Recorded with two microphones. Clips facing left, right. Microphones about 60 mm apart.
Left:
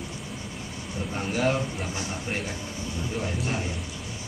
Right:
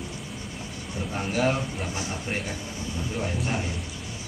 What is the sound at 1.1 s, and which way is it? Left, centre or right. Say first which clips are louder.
Speech: even; centre.